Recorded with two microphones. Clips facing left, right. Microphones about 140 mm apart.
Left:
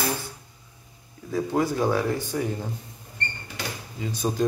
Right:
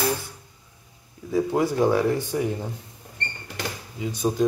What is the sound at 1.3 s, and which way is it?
Speech, 15° right (ahead or behind).